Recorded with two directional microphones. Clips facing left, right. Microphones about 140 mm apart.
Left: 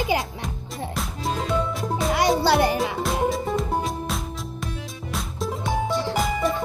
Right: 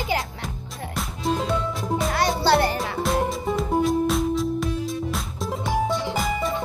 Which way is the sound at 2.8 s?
Centre (ahead or behind).